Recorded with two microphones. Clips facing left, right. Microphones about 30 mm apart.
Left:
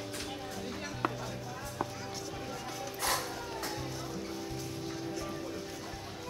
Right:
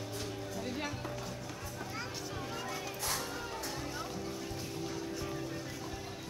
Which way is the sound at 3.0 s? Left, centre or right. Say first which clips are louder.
Left 5 dB; left.